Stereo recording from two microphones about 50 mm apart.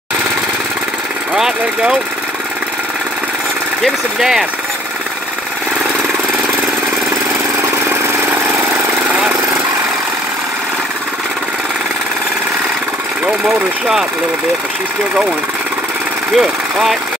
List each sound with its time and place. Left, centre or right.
1.3 s speech: centre
4.2 s speech: centre
16.3 s speech: centre